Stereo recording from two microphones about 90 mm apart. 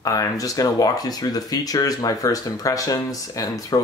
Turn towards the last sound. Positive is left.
turn(degrees=40)  # may be behind; listen again after turning